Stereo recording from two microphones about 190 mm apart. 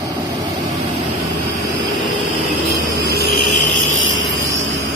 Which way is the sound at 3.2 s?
70° right (ahead or behind).